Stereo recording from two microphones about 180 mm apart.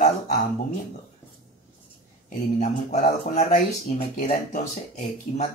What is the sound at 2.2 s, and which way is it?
Speech, 40° left (ahead or behind).